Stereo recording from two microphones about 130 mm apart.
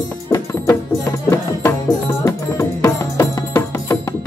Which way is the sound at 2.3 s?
20° left (ahead or behind).